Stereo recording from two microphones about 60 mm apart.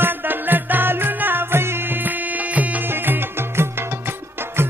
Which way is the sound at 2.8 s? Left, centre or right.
Right.